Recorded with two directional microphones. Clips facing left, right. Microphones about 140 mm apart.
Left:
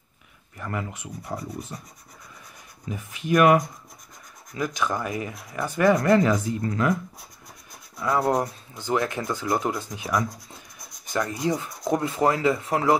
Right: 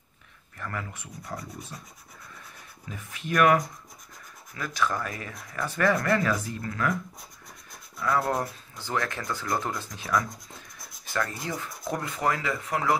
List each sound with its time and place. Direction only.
0.6 s speech: 20° left (ahead or behind)
2.9 s speech: 20° left (ahead or behind)
8.0 s speech: 20° left (ahead or behind)
10.3 s writing: centre (ahead or behind)
11.1 s speech: 20° left (ahead or behind)